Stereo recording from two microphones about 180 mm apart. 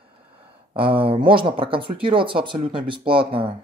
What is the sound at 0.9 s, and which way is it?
Speech, 30° right (ahead or behind).